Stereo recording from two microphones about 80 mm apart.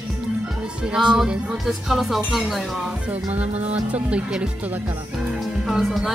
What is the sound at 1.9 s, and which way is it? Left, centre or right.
Speech, centre.